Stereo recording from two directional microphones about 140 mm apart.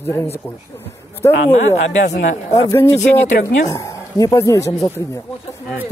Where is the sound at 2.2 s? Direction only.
65° left (ahead or behind).